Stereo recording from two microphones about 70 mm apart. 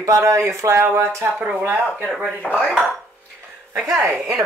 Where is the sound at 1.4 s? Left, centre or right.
Right.